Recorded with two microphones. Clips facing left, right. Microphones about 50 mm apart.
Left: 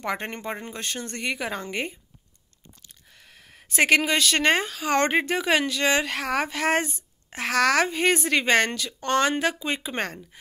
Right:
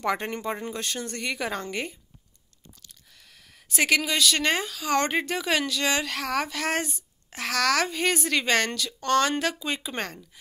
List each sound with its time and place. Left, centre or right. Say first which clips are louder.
0.0 s speech: right 2 dB; centre
0.3 s speech: right 2 dB; left
1.2 s a woman's voice: left 1 dB; centre
1.7 s speech: left 2 dB; left
3.2 s speech: left 4 dB; left